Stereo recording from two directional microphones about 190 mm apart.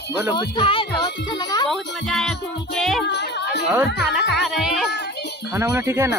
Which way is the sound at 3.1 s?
65° left (ahead or behind).